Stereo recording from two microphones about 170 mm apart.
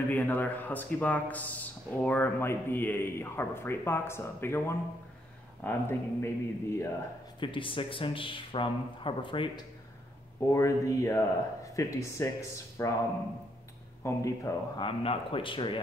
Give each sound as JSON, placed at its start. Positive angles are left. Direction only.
{"t": 0.1, "sound": "a man's voice", "side_deg": 10}
{"t": 7.3, "sound": "speech", "side_deg": 30}
{"t": 10.5, "sound": "a man's voice", "side_deg": 20}
{"t": 14.0, "sound": "a man's voice", "side_deg": 15}
{"t": 14.8, "sound": "speech", "side_deg": 30}